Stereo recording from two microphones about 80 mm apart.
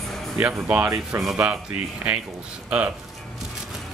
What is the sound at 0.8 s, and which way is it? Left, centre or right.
Speech, right.